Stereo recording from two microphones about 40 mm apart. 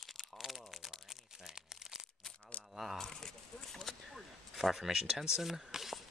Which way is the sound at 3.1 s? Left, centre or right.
Centre.